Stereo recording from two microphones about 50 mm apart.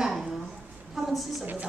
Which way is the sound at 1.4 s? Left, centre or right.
Right.